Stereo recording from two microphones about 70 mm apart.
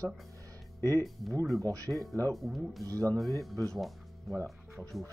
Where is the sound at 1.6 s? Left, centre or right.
Right.